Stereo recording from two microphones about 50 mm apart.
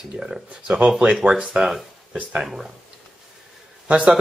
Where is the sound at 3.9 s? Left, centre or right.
Right.